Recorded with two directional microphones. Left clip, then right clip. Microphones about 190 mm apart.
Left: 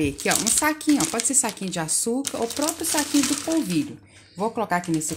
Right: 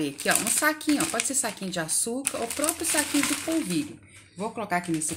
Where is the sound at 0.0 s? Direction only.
45° left (ahead or behind).